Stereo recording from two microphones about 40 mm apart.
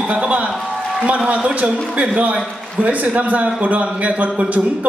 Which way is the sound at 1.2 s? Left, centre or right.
Right.